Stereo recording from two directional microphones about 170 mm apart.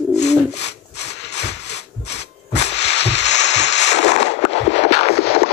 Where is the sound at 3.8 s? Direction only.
40° left (ahead or behind).